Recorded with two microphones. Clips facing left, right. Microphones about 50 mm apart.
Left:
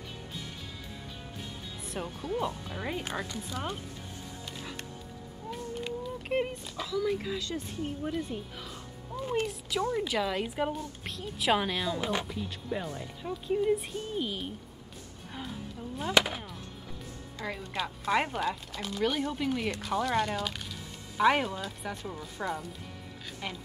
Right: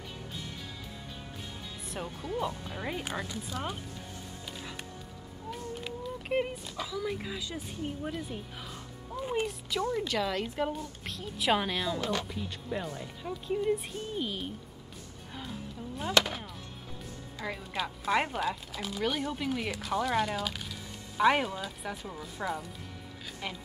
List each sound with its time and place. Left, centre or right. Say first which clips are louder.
2.0 s speech: left 1 dB; centre
4.5 s music: even; centre
5.5 s speech: left 2 dB; centre
12.0 s speech: left 1 dB; centre
12.3 s speech: left 1 dB; centre
16.1 s speech: left 1 dB; centre